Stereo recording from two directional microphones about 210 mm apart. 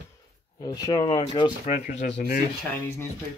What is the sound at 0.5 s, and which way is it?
Speech, 20° left (ahead or behind).